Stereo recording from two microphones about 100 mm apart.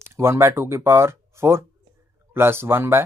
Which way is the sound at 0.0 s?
25° right (ahead or behind).